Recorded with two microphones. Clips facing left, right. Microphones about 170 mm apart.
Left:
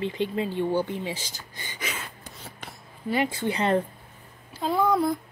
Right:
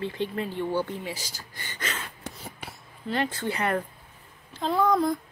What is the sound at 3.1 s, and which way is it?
Speech, 10° left (ahead or behind).